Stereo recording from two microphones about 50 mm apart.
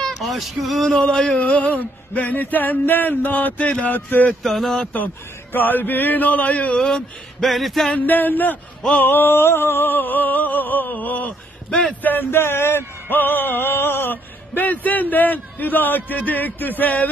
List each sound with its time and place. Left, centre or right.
0.0 s speech: centre
1.3 s a man's voice: left
3.9 s a man's voice: left
4.4 s speech: centre
4.9 s a man's voice: left
6.8 s speech: centre
7.4 s a sound: centre
8.1 s a man's voice: left
9.0 s music: left
9.9 s a man's voice: left
12.0 s music: left
14.1 s a man's voice: left